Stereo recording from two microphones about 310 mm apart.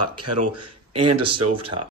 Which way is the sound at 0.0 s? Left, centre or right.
Right.